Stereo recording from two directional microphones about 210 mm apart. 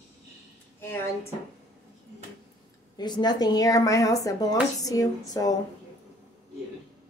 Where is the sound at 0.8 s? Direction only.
10° left (ahead or behind).